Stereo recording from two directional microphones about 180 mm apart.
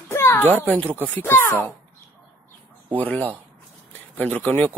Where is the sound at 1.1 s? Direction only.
15° left (ahead or behind).